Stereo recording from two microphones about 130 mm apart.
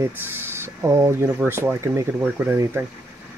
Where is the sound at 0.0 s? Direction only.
15° right (ahead or behind).